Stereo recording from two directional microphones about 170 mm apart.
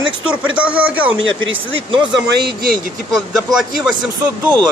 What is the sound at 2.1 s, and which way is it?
Speech, 70° right (ahead or behind).